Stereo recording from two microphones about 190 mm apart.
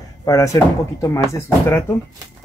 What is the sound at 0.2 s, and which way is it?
Speech, 15° left (ahead or behind).